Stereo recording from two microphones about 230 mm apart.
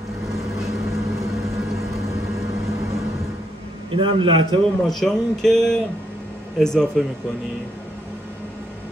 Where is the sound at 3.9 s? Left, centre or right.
Right.